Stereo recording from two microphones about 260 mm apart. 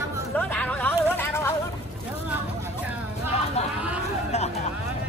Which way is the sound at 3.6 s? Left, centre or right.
Left.